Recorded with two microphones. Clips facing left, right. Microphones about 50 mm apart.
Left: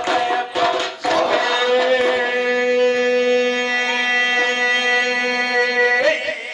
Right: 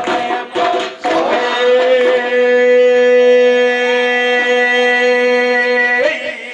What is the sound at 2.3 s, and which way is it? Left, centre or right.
Shofar, centre.